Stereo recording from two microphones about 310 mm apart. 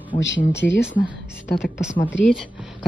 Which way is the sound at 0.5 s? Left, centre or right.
Left.